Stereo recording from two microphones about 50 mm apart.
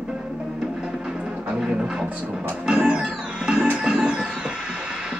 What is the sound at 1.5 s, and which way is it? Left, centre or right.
Music, centre.